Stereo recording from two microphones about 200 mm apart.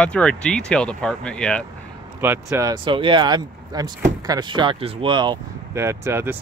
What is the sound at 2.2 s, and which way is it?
Speech, 10° right (ahead or behind).